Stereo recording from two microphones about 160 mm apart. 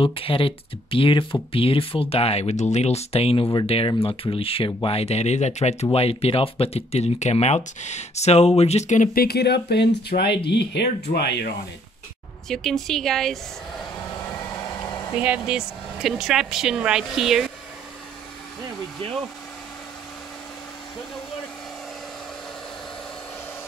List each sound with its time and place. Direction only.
0.0 s speech: 35° left (ahead or behind); by 11.5 s 90° left
12.4 s speech: centre (ahead or behind)
14.5 s vehicle: 25° left (ahead or behind)
15.1 s speech: 10° right (ahead or behind)